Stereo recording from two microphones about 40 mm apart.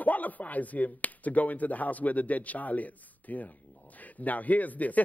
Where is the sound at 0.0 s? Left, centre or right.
Left.